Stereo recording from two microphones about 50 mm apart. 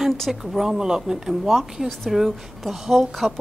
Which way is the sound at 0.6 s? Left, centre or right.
Centre.